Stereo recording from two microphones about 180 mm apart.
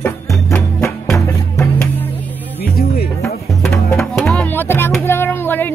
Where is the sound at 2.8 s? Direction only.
60° left (ahead or behind).